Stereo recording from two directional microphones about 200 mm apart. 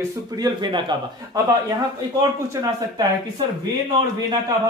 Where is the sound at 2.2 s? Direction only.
20° right (ahead or behind).